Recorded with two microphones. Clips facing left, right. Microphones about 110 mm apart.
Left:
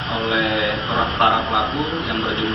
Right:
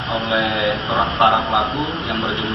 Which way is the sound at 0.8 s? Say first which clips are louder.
Right 3 dB; 25° right (ahead or behind).